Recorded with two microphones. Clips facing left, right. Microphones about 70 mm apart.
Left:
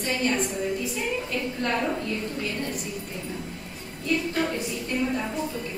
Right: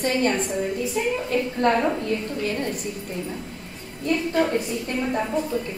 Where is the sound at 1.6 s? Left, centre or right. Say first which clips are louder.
Right 8 dB; right.